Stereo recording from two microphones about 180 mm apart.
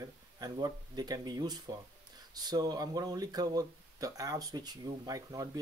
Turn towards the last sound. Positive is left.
turn(degrees=-20)  # may be behind; listen again after turning